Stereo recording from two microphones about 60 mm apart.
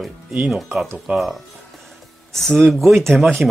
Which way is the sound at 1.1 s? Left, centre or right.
Right.